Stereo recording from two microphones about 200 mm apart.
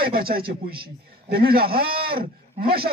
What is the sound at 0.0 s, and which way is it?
A man's voice, 50° right (ahead or behind).